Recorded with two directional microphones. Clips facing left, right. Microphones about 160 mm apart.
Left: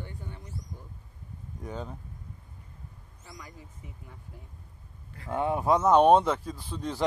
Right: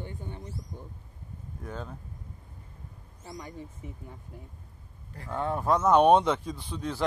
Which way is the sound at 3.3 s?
30° right (ahead or behind).